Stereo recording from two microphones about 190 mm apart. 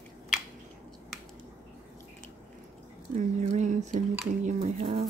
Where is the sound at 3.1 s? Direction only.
35° right (ahead or behind).